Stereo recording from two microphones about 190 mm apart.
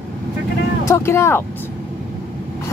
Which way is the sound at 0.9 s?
15° left (ahead or behind).